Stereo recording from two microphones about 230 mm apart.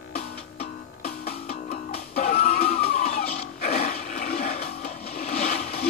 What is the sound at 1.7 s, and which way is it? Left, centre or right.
Music, left.